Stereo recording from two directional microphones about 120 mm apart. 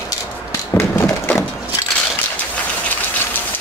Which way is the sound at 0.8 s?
20° left (ahead or behind).